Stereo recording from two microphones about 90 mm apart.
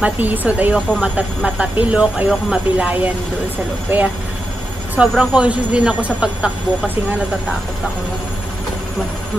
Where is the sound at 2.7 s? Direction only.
15° right (ahead or behind).